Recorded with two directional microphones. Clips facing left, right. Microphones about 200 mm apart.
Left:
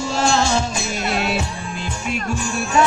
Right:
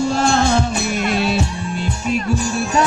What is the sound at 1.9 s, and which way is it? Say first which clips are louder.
Music: right 5 dB; 40° right (ahead or behind).